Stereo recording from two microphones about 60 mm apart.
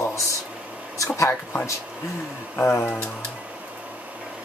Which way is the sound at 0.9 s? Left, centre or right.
Left.